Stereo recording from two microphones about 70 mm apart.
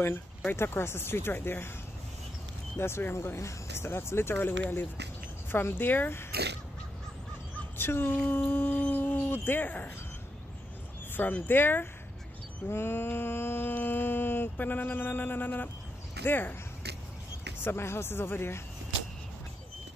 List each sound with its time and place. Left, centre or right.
0.5 s mantra: left
2.8 s mantra: left
7.7 s mantra: left
8.9 s a sound: left
11.1 s speech: left
12.6 s mantra: left
16.3 s speech: left
17.6 s mantra: left